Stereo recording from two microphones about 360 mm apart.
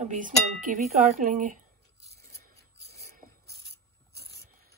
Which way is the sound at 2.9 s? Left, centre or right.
Right.